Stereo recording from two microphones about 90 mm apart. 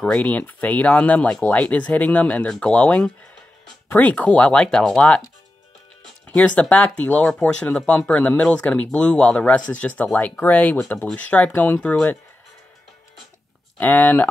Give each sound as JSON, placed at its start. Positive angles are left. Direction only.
{"t": 0.0, "sound": "speech", "side_deg": 15}
{"t": 6.2, "sound": "speech", "side_deg": 15}
{"t": 13.7, "sound": "speech", "side_deg": 20}